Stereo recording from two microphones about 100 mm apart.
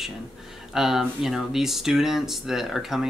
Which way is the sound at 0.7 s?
5° right (ahead or behind).